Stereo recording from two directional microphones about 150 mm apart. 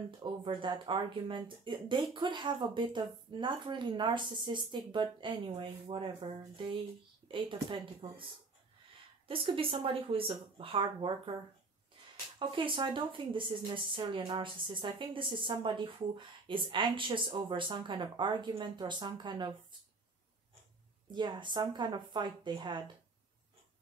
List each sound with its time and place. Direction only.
0.2 s speech: 35° right (ahead or behind)
9.3 s speech: 35° right (ahead or behind)
12.4 s speech: 35° right (ahead or behind)
21.1 s speech: 30° right (ahead or behind)